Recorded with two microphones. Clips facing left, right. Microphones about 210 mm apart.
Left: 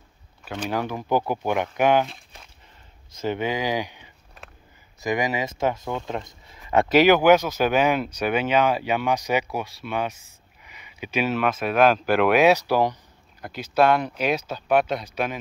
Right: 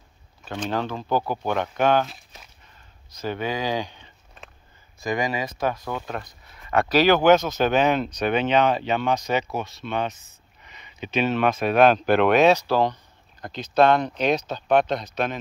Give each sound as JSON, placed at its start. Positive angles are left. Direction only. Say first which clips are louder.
{"t": 0.5, "sound": "speech", "louder": "even", "side_deg": 10}
{"t": 2.0, "sound": "walk", "louder": "left 1 dB", "side_deg": 0}
{"t": 3.2, "sound": "a sound", "louder": "left 2 dB", "side_deg": 20}
{"t": 5.0, "sound": "speech", "louder": "left 1 dB", "side_deg": 20}